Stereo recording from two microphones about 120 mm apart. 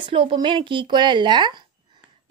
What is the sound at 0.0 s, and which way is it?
A woman's voice, 45° right (ahead or behind).